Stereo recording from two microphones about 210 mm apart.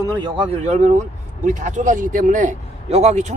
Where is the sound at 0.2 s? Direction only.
30° right (ahead or behind).